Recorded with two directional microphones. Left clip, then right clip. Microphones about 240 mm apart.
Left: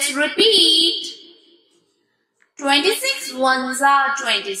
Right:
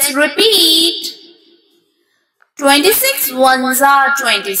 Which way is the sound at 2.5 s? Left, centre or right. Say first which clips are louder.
Right 7 dB; right.